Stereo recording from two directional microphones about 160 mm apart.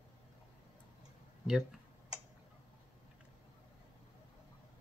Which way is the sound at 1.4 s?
5° right (ahead or behind).